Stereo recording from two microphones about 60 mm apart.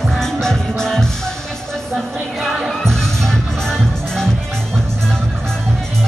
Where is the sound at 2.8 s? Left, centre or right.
Centre.